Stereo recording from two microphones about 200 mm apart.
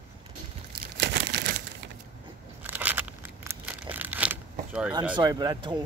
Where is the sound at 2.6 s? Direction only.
10° right (ahead or behind).